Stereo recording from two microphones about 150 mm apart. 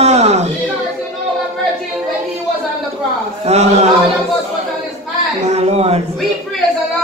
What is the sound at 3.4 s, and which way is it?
Speech, 45° right (ahead or behind).